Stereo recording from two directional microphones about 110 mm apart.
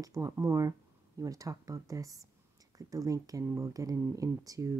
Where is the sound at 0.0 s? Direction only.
30° right (ahead or behind).